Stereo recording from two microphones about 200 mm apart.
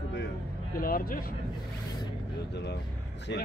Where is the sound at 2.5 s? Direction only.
55° left (ahead or behind).